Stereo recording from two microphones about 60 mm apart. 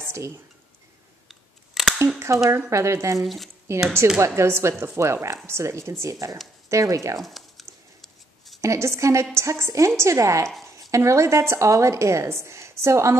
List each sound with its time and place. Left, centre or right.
0.0 s a sound: right
1.3 s camera: centre
2.1 s a woman's voice: right
3.2 s speech: centre
3.7 s a woman's voice: right
7.2 s a sound: centre
8.5 s a woman's voice: right